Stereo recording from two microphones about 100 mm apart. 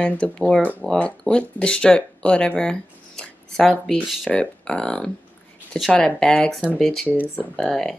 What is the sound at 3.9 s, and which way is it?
Speech, centre (ahead or behind).